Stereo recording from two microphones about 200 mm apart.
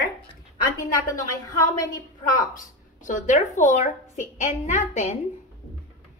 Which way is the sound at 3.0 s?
40° left (ahead or behind).